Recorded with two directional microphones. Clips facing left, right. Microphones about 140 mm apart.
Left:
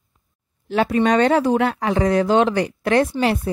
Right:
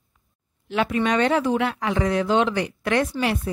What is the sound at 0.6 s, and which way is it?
Speech, 35° left (ahead or behind).